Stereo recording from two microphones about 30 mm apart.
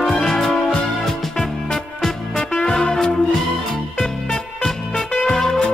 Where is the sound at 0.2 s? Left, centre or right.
Centre.